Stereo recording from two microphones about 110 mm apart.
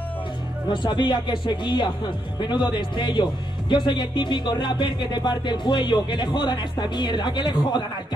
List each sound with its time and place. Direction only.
0.8 s speech: 45° left (ahead or behind)